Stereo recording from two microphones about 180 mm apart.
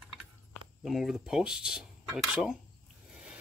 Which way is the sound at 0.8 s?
Centre (ahead or behind).